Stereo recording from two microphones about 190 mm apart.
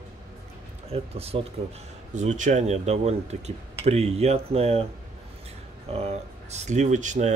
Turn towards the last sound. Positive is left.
turn(degrees=-40)  # may be behind; listen again after turning